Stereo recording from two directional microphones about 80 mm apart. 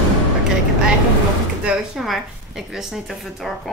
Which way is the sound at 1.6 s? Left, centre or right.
Centre.